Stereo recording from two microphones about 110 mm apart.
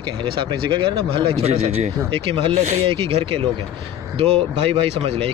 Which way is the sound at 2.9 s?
55° right (ahead or behind).